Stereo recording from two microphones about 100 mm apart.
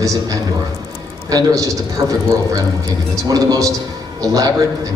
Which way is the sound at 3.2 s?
40° right (ahead or behind).